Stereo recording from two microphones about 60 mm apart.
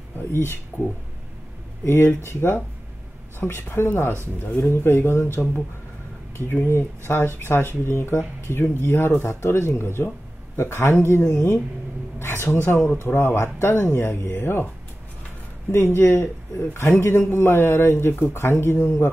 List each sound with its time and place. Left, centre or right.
0.2 s speech: left
15.7 s speech: left